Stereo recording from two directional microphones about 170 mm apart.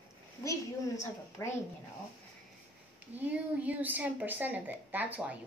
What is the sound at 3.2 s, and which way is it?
A woman's voice, 10° right (ahead or behind).